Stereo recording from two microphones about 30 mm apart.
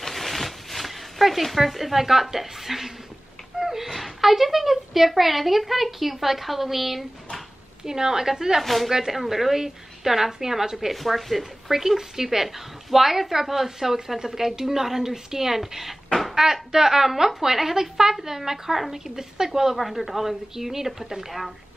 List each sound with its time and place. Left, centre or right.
0.0 s a sound: centre
3.5 s speech: centre
7.8 s speech: centre
8.6 s speech: centre
10.9 s speech: centre
16.1 s a sound: centre
16.7 s speech: centre
19.8 s speech: centre